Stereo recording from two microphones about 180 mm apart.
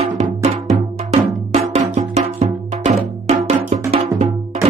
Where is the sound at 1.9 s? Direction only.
40° right (ahead or behind).